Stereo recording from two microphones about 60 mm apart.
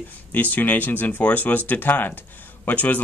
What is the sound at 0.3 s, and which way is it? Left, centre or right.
Speech, left.